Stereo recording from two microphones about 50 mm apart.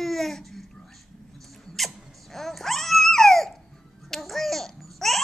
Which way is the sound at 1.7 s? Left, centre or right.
Centre.